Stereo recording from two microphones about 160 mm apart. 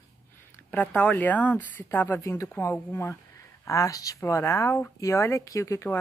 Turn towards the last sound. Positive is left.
turn(degrees=20)  # may be behind; listen again after turning